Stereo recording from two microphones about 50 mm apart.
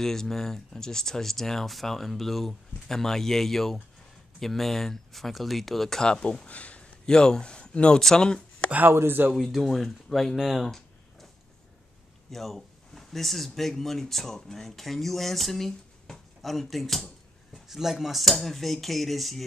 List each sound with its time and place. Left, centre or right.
0.0 s speech: centre; by 6.9 s left
7.1 s speech: centre
8.9 s speech: right
9.4 s speech: centre
10.3 s a sound: centre
12.3 s speech: centre